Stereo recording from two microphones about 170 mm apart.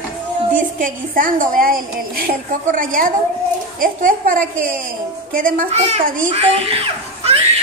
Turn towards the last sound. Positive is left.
turn(degrees=-35)  # may be behind; listen again after turning